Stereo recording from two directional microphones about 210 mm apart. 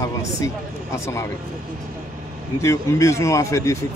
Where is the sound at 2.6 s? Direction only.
15° left (ahead or behind).